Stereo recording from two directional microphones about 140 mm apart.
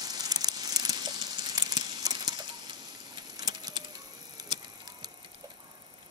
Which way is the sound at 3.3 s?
25° right (ahead or behind).